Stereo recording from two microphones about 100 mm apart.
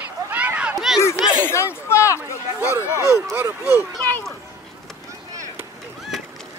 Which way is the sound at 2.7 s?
30° right (ahead or behind).